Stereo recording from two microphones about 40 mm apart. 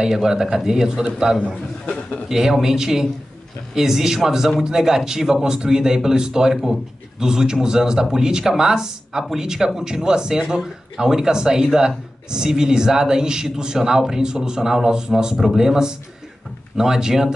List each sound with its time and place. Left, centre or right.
0.0 s a man's voice: centre
1.4 s a man's voice: left
2.2 s a man's voice: centre